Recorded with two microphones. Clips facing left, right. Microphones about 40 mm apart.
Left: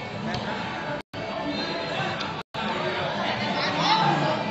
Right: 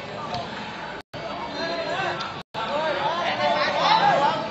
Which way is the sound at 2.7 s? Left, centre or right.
Right.